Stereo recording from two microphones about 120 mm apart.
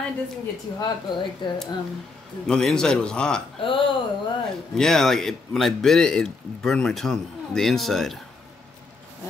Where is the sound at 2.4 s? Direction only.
5° left (ahead or behind).